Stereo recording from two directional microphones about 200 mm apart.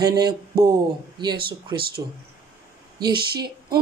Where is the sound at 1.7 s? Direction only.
50° right (ahead or behind).